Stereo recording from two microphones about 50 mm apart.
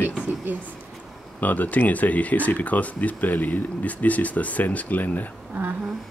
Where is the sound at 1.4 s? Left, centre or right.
Left.